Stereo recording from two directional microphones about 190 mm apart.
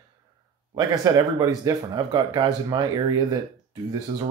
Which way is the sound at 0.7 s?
20° right (ahead or behind).